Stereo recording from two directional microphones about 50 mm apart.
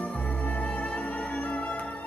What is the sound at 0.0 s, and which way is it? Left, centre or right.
Music, left.